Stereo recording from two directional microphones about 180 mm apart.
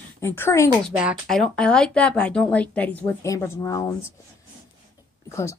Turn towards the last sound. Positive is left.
turn(degrees=15)  # may be behind; listen again after turning